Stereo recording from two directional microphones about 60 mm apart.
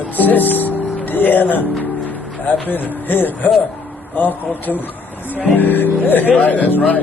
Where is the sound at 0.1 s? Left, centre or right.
Left.